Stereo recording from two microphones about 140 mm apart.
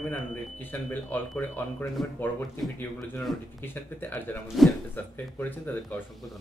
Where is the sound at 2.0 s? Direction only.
Centre (ahead or behind).